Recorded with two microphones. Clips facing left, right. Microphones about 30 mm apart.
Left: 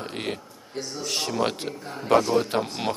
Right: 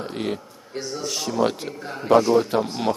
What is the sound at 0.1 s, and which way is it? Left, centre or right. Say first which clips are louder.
A man's voice: right 4 dB; left.